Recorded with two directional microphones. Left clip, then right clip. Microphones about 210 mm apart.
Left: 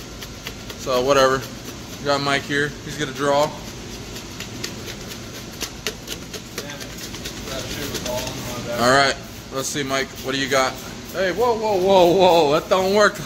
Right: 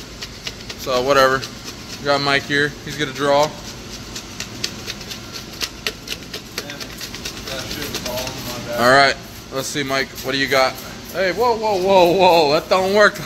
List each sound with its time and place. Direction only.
0.8 s speech: centre (ahead or behind)
2.0 s speech: 25° right (ahead or behind)
8.7 s speech: 15° right (ahead or behind)